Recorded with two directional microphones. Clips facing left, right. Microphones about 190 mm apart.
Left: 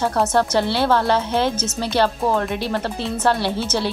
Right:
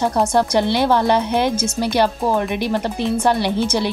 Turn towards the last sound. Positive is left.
turn(degrees=-15)  # may be behind; listen again after turning